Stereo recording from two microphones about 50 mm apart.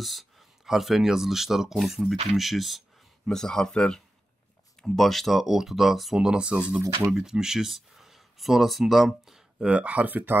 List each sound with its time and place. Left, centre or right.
0.0 s speech: centre
3.3 s speech: centre
6.1 s speech: centre
9.7 s speech: right